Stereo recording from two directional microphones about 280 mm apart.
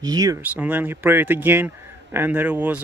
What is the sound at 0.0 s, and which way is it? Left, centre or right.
Speech, centre.